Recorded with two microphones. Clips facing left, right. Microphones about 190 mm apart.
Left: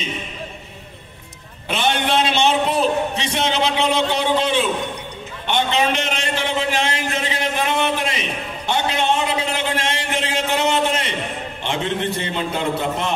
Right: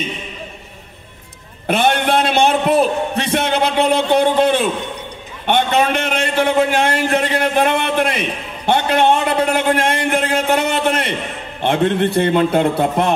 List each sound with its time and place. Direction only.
1.7 s a man's voice: 55° right (ahead or behind)